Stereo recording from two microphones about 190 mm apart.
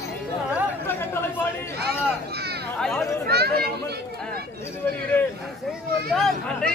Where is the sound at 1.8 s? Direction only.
60° right (ahead or behind).